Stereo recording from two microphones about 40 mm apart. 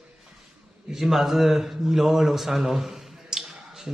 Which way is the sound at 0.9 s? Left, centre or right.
Centre.